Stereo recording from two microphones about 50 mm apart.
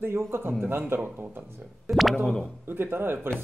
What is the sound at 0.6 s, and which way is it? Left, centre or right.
Speech, right.